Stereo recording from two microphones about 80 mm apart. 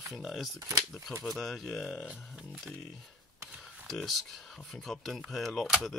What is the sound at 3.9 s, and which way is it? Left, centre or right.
Speech, centre.